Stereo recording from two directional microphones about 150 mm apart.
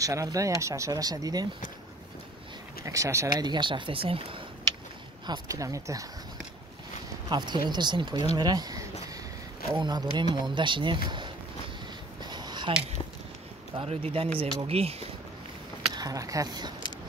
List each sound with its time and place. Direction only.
0.0 s speech: 20° right (ahead or behind)
2.8 s speech: 20° right (ahead or behind); by 4.4 s 40° right (ahead or behind)
5.2 s speech: 25° right (ahead or behind)
7.2 s speech: 30° right (ahead or behind)
12.2 s a sound: 30° right (ahead or behind)
13.7 s speech: 40° right (ahead or behind)
15.9 s speech: 25° right (ahead or behind)